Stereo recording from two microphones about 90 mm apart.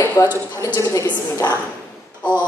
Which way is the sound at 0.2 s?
35° left (ahead or behind).